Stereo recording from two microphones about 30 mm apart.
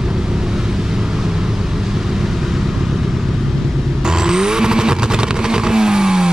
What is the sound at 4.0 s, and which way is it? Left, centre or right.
Vehicle, right.